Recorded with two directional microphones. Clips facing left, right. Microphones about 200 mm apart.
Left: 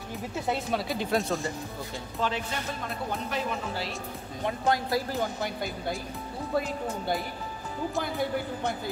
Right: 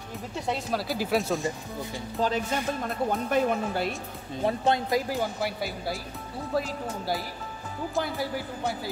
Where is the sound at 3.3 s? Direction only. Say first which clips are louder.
Right 7 dB; 55° right (ahead or behind).